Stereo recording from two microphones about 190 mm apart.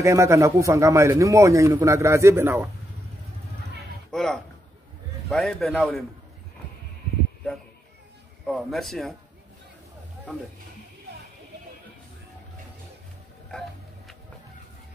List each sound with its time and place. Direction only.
0.0 s a man's voice: 15° right (ahead or behind)
4.1 s a man's voice: 5° left (ahead or behind)
8.5 s a man's voice: centre (ahead or behind)
13.5 s music: centre (ahead or behind)